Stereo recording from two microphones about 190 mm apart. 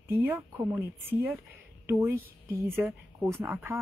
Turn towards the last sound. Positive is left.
turn(degrees=-10)  # may be behind; listen again after turning